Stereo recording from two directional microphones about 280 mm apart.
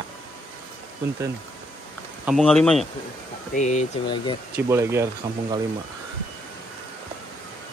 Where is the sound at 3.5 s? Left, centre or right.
Left.